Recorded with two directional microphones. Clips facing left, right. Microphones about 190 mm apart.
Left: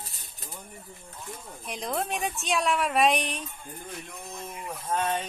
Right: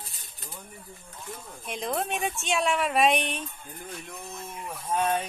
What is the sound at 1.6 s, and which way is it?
A woman's voice, centre (ahead or behind).